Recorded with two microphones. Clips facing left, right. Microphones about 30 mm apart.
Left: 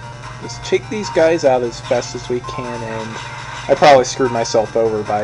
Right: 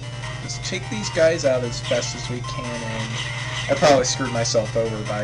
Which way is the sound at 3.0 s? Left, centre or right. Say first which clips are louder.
Left 1 dB; right.